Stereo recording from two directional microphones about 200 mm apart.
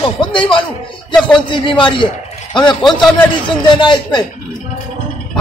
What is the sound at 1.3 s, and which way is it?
Speech, 25° left (ahead or behind).